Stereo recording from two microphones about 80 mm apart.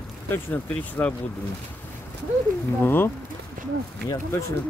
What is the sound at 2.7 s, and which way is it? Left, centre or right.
Speech, left.